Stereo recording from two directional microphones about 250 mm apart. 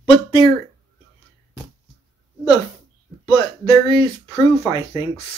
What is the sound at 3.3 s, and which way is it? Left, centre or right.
Speech, left.